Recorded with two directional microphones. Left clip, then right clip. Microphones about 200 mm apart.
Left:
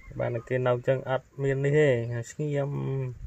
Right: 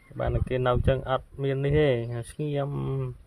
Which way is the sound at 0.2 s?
10° right (ahead or behind).